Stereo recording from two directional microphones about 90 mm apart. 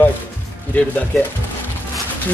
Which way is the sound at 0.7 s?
15° left (ahead or behind).